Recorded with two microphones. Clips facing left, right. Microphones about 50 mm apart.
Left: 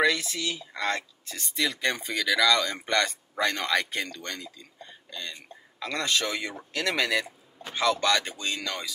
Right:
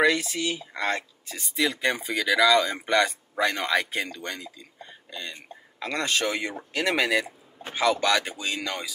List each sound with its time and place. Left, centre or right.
0.0 s speech: right
5.1 s speech: right